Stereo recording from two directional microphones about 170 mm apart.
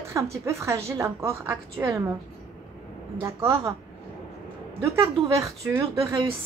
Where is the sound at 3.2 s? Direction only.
15° right (ahead or behind).